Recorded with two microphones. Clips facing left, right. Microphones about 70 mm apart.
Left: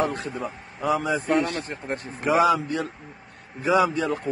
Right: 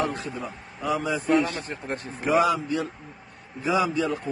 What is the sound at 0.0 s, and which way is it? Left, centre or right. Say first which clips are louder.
A man's voice: left 2 dB; left.